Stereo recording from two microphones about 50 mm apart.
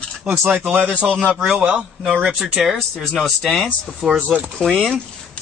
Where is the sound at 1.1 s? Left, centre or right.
Centre.